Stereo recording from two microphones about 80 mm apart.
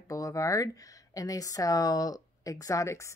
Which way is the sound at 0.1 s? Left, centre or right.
Left.